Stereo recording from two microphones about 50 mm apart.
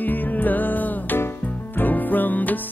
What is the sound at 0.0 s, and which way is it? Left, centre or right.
Music, left.